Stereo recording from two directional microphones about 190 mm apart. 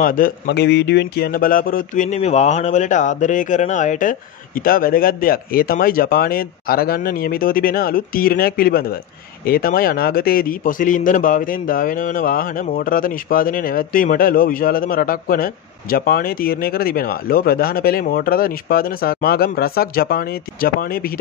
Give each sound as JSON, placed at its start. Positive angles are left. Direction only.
{"t": 0.0, "sound": "a man's voice", "side_deg": 45}